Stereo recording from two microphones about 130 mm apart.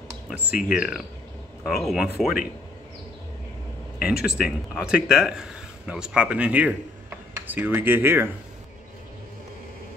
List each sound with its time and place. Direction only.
0.3 s speech: 5° right (ahead or behind)
4.0 s speech: 5° right (ahead or behind)